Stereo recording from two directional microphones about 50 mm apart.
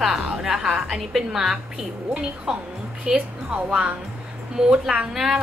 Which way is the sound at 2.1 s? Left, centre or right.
Right.